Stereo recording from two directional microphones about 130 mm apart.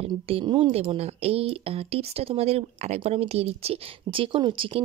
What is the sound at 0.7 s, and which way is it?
Speech, 50° right (ahead or behind).